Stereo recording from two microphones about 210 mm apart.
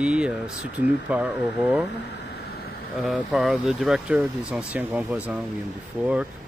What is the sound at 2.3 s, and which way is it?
Vehicle, 50° left (ahead or behind).